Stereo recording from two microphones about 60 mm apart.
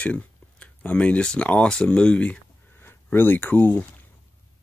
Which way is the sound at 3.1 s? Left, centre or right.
Left.